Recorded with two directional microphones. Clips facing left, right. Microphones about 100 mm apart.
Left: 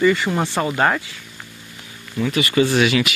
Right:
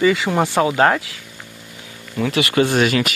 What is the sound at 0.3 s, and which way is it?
Speech, 50° right (ahead or behind).